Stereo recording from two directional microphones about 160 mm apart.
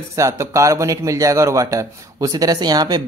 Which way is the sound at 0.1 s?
20° right (ahead or behind).